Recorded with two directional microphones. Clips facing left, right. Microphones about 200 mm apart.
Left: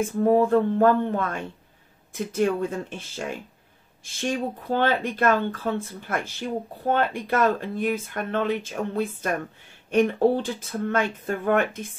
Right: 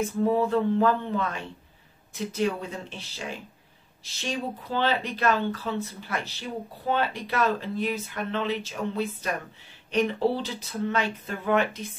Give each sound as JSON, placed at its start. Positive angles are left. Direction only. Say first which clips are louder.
{"t": 0.2, "sound": "speech", "louder": "left 5 dB", "side_deg": 50}